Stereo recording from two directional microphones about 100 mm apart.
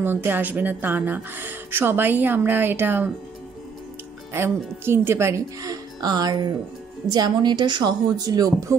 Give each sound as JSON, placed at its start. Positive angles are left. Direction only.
{"t": 0.0, "sound": "a woman's voice", "side_deg": -20}
{"t": 4.3, "sound": "a woman's voice", "side_deg": -25}